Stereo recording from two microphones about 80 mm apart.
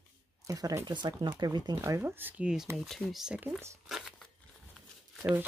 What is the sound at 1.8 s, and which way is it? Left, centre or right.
Speech, right.